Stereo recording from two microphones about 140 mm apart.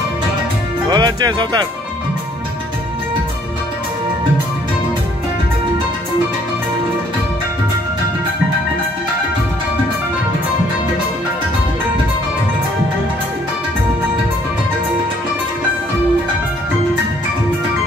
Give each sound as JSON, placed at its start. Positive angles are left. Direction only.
{"t": 0.8, "sound": "speech", "side_deg": -30}